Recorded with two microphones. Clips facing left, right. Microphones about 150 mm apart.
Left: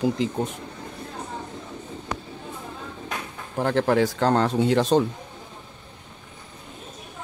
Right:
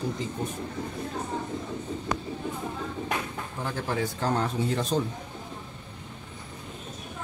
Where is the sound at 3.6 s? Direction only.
70° left (ahead or behind).